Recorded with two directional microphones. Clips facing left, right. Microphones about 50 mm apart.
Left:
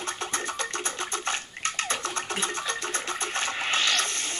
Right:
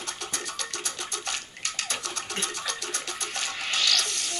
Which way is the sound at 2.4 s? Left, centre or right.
Left.